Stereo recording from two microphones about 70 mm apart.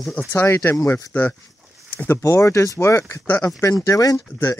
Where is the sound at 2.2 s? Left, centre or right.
Left.